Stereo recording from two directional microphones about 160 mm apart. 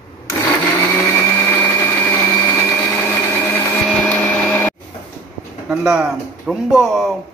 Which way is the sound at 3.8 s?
10° left (ahead or behind).